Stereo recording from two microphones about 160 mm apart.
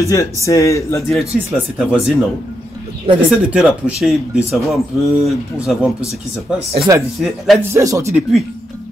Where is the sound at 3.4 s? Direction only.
10° right (ahead or behind).